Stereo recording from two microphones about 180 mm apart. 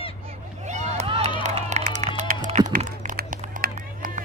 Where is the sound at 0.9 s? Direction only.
35° right (ahead or behind).